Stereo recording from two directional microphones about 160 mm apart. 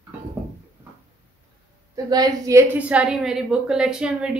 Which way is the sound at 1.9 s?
25° right (ahead or behind).